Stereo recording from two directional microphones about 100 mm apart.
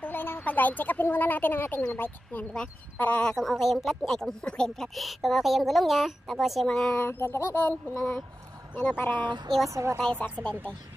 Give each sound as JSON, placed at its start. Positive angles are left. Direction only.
{"t": 0.0, "sound": "speech", "side_deg": 20}
{"t": 7.0, "sound": "speech", "side_deg": 25}
{"t": 9.2, "sound": "speech", "side_deg": -50}
{"t": 9.7, "sound": "a woman's voice", "side_deg": -30}